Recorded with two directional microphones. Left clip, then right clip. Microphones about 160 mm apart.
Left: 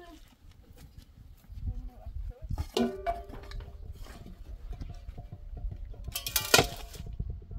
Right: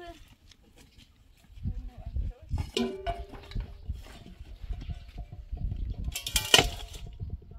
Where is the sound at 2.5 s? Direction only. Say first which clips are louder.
Left 1 dB; 20° left (ahead or behind).